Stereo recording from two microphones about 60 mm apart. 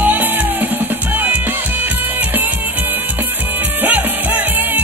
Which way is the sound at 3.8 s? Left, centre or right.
Right.